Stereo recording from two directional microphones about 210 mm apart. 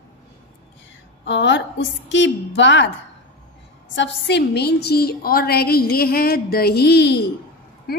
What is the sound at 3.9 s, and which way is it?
A woman's voice, 55° left (ahead or behind).